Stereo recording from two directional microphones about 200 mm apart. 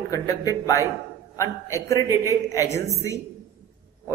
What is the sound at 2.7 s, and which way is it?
Speech, 15° left (ahead or behind).